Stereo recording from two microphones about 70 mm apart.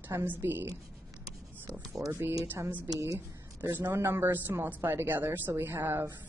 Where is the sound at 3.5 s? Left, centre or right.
Right.